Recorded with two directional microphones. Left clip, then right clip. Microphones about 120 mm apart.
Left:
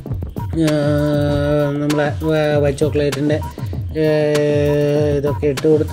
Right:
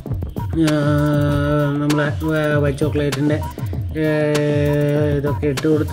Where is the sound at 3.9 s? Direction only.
25° left (ahead or behind).